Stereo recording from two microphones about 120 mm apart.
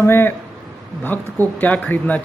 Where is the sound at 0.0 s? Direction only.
20° left (ahead or behind).